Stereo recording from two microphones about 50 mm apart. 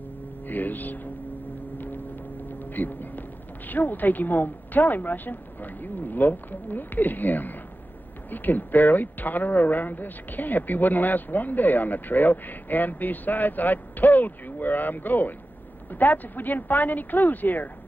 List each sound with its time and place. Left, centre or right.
0.5 s speech: left
2.4 s speech: left